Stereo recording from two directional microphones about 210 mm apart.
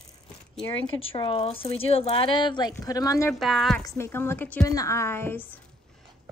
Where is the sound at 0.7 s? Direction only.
25° left (ahead or behind).